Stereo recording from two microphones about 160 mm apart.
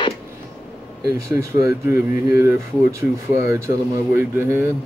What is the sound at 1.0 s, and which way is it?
Speech, 20° right (ahead or behind).